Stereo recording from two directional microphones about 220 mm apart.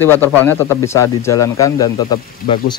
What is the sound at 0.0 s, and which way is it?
Speech, 10° left (ahead or behind).